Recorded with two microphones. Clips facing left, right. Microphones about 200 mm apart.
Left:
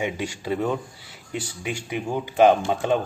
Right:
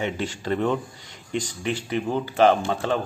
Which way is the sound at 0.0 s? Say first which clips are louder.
Even; 10° left (ahead or behind).